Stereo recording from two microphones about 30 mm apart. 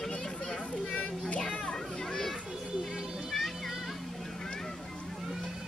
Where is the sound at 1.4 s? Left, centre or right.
Left.